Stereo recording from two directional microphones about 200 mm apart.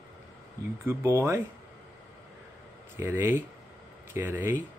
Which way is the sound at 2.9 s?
10° right (ahead or behind).